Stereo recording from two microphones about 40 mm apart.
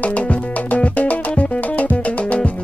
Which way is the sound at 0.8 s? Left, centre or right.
Left.